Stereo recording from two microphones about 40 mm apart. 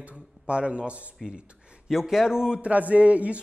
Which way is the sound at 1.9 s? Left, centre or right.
Centre.